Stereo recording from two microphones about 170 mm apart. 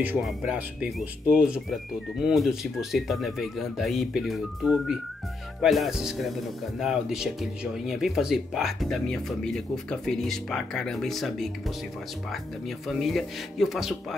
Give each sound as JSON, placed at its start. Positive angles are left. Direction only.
{"t": 0.0, "sound": "speech", "side_deg": -5}